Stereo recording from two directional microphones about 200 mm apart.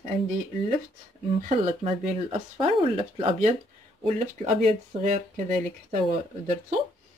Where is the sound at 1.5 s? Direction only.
30° right (ahead or behind).